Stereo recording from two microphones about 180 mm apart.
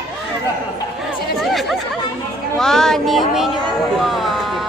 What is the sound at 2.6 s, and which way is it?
Speech, centre (ahead or behind).